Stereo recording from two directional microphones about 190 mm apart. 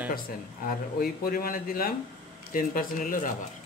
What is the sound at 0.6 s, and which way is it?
A man's voice, 50° left (ahead or behind).